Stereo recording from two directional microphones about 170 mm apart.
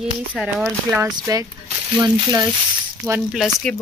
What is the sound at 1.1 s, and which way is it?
Speech, 20° right (ahead or behind).